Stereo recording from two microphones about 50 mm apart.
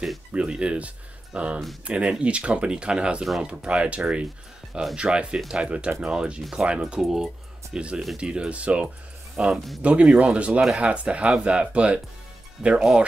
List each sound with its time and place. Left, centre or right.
0.3 s speech: right
7.0 s speech: centre
7.7 s speech: centre
12.6 s speech: centre